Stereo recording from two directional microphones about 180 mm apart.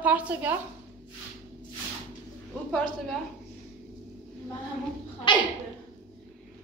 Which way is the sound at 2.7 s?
5° left (ahead or behind).